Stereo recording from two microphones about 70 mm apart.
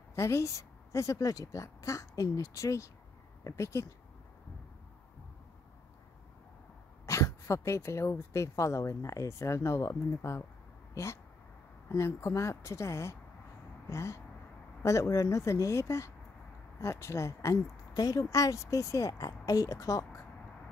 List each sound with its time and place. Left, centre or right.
0.1 s a woman's voice: left
7.1 s a woman's voice: left
13.8 s a sound: left
14.8 s a woman's voice: left